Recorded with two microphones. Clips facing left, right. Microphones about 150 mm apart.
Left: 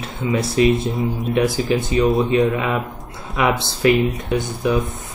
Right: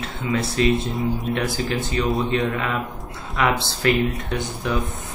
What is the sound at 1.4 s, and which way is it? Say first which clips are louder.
Speech: left 6 dB; 15° left (ahead or behind).